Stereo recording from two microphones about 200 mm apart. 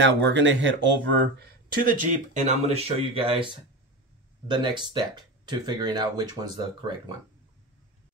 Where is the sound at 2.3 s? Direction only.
30° right (ahead or behind).